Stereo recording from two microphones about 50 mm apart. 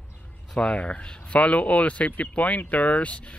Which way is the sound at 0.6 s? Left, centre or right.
Left.